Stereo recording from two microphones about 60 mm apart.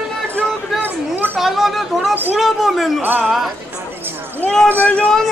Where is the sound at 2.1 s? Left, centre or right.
Right.